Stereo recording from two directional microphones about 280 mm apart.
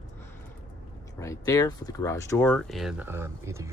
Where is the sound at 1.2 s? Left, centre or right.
Centre.